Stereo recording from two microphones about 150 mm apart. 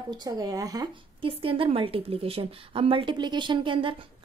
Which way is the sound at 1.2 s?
35° right (ahead or behind).